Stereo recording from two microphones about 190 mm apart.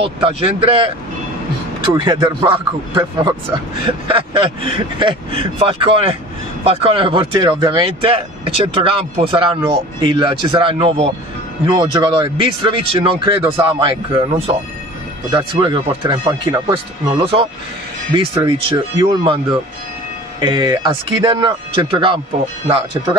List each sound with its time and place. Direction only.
0.0 s speech: 30° right (ahead or behind)
2.0 s speech: 25° right (ahead or behind)